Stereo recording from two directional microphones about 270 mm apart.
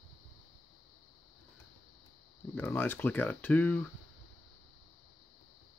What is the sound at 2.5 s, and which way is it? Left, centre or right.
Speech, centre.